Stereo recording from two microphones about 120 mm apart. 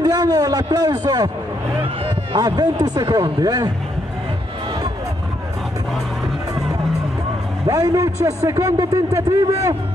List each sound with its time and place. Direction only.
0.0 s a man's voice: 30° right (ahead or behind)
2.3 s speech: 35° right (ahead or behind)
7.6 s a man's voice: 25° right (ahead or behind)